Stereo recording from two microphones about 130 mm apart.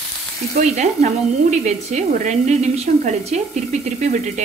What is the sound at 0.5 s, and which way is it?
Speech, 60° right (ahead or behind).